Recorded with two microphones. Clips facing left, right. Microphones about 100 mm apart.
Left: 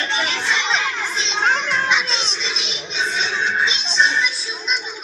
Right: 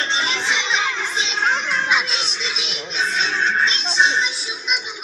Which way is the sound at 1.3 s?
Centre (ahead or behind).